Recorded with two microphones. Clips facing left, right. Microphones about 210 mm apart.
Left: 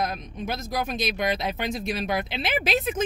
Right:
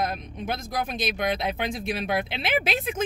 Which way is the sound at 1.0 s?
55° right (ahead or behind).